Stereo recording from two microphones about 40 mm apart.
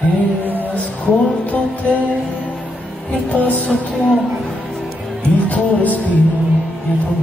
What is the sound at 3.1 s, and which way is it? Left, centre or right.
Music, left.